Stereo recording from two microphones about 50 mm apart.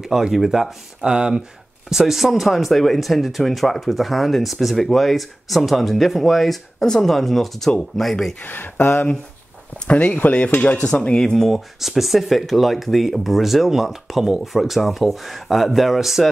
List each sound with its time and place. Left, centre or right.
0.0 s speech: centre
8.5 s speech: left
9.8 s speech: left
10.9 s speech: centre